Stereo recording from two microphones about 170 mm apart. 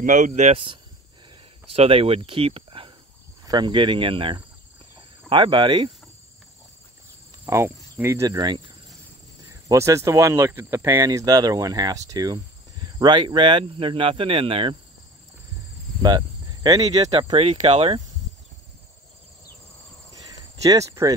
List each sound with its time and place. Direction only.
0.0 s speech: 45° right (ahead or behind); by 5.9 s 30° right (ahead or behind)
7.4 s speech: 15° right (ahead or behind); by 14.8 s 30° right (ahead or behind)
16.0 s speech: 25° right (ahead or behind)
20.6 s speech: 20° right (ahead or behind)